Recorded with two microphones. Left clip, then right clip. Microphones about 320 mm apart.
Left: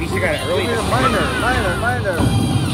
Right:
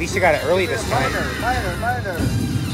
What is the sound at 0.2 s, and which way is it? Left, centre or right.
Speech, centre.